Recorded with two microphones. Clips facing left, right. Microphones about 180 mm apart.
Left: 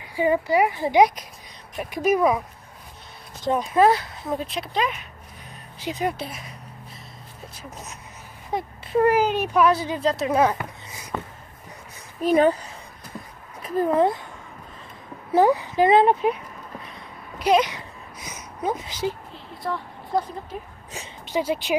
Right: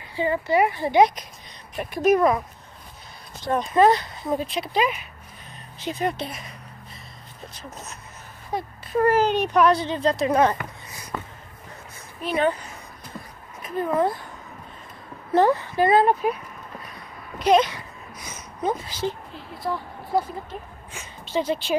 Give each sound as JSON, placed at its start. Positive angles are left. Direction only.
{"t": 0.0, "sound": "speech", "side_deg": 15}
{"t": 3.5, "sound": "a child's voice", "side_deg": 5}
{"t": 5.8, "sound": "speech", "side_deg": 10}
{"t": 8.5, "sound": "a child's voice", "side_deg": 20}
{"t": 12.2, "sound": "speech", "side_deg": 40}
{"t": 13.6, "sound": "speech", "side_deg": 35}
{"t": 15.3, "sound": "speech", "side_deg": 15}
{"t": 17.4, "sound": "a sound", "side_deg": 10}
{"t": 18.9, "sound": "speech", "side_deg": 15}
{"t": 19.3, "sound": "a sound", "side_deg": -5}
{"t": 20.5, "sound": "speech", "side_deg": 5}